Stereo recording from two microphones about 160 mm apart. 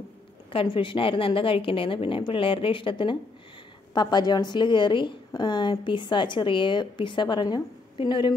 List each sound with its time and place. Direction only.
0.5 s a woman's voice: 30° left (ahead or behind)